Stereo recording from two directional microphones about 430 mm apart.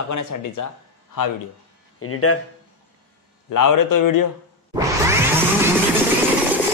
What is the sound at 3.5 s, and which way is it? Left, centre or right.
Speech, left.